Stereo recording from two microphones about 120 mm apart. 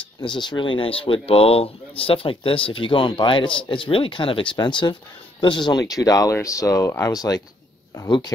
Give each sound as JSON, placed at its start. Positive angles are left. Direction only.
{"t": 0.2, "sound": "speech", "side_deg": 40}